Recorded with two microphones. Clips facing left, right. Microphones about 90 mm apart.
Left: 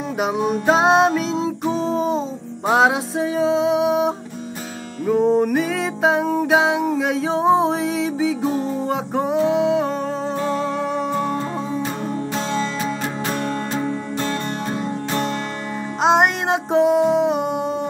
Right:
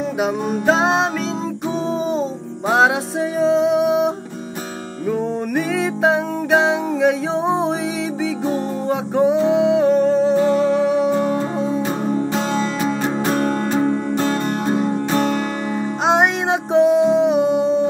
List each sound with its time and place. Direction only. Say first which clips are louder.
0.2 s music: left 2 dB; 5° left (ahead or behind)
12.8 s music: right 5 dB; 40° right (ahead or behind)
16.0 s music: left 1 dB; centre (ahead or behind)